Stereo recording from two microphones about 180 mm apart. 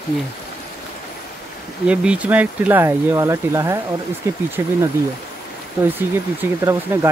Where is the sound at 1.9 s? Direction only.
5° right (ahead or behind).